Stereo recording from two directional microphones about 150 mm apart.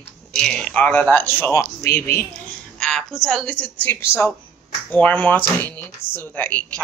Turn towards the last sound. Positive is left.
turn(degrees=10)  # may be behind; listen again after turning